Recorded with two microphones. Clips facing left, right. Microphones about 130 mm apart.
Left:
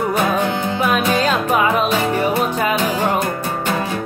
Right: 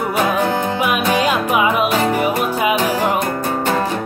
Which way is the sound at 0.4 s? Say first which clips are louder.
Right 2 dB; 40° right (ahead or behind).